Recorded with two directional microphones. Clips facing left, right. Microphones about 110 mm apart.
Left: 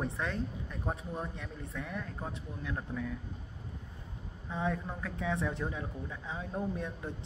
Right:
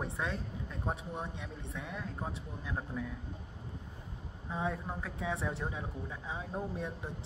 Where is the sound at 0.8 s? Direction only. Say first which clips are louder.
Left 1 dB; 20° right (ahead or behind).